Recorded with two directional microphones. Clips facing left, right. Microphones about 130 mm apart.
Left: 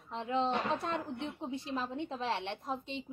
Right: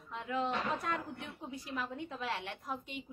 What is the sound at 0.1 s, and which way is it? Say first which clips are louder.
Speech: left 3 dB; 30° left (ahead or behind).